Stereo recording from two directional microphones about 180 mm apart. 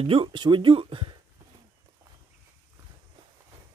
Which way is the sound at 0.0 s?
30° right (ahead or behind).